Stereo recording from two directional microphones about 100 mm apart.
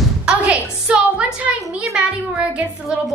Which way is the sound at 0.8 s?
10° right (ahead or behind).